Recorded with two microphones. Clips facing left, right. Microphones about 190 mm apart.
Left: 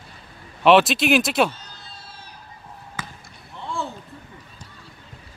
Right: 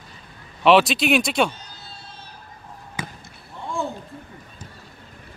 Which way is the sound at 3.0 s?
15° right (ahead or behind).